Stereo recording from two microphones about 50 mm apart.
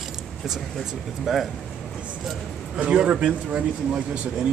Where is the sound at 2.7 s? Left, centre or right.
Centre.